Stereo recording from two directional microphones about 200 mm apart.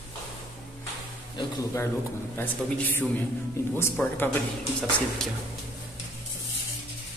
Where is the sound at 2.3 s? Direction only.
10° left (ahead or behind).